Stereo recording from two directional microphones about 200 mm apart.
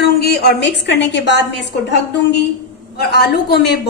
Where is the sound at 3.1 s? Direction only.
55° left (ahead or behind).